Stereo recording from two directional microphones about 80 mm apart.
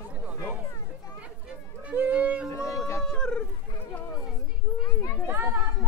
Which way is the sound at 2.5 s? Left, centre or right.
Left.